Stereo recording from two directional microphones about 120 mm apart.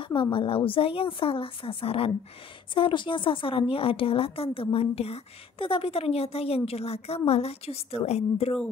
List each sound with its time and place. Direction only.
0.0 s a woman's voice: 45° left (ahead or behind)